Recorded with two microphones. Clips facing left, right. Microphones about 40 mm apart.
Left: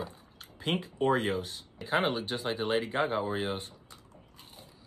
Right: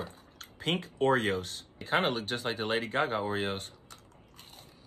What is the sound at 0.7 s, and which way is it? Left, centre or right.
Speech, centre.